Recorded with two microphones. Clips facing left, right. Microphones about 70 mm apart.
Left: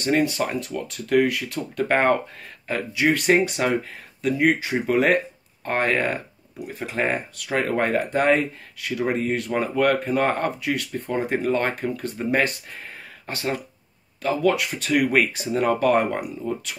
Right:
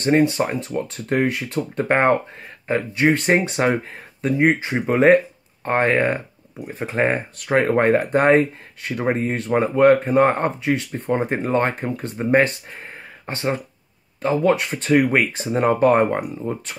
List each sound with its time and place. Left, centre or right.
0.0 s speech: right